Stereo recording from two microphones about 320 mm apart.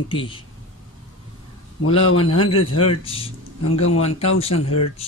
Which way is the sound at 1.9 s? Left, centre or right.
Centre.